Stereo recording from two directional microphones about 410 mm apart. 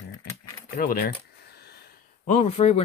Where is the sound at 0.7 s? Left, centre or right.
Left.